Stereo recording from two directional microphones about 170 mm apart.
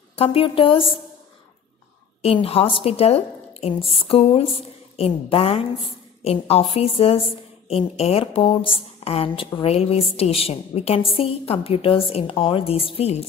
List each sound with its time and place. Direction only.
0.2 s a woman's voice: 35° left (ahead or behind)
2.2 s a woman's voice: 35° left (ahead or behind)